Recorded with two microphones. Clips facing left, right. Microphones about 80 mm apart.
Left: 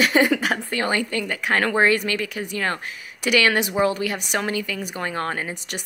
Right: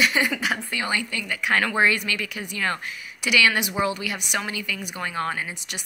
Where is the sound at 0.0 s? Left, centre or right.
Left.